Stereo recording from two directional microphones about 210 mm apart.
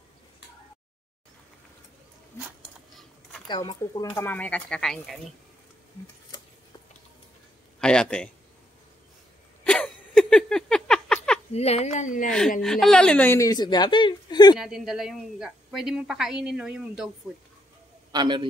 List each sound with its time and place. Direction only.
3.4 s speech: 20° left (ahead or behind); by 5.2 s centre (ahead or behind)
7.8 s a woman's voice: 5° left (ahead or behind)
9.7 s a sound: 5° left (ahead or behind)
11.5 s a woman's voice: 30° left (ahead or behind)
12.6 s a woman's voice: centre (ahead or behind); by 14.6 s 20° left (ahead or behind)
14.6 s a woman's voice: centre (ahead or behind)
18.1 s a man's voice: 20° right (ahead or behind)